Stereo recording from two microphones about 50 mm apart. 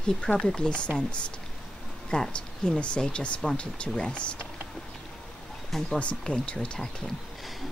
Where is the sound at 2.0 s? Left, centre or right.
Centre.